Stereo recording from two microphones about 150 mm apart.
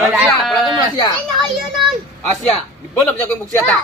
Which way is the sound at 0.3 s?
25° left (ahead or behind).